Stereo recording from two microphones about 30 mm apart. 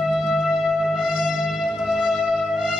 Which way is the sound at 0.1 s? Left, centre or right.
Centre.